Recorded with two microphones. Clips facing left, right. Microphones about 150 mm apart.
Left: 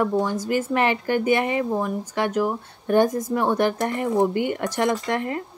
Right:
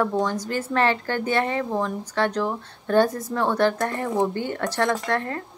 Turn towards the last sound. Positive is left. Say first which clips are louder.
# left 1 dB
turn(degrees=15)  # may be behind; listen again after turning